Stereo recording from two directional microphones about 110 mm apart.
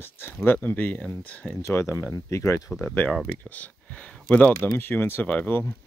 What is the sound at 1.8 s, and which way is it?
Speech, 25° left (ahead or behind).